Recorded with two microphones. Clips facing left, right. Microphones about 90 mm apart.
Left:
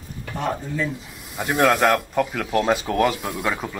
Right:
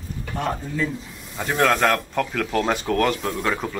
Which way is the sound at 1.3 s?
15° left (ahead or behind).